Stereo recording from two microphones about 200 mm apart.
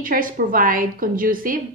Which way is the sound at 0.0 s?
45° right (ahead or behind).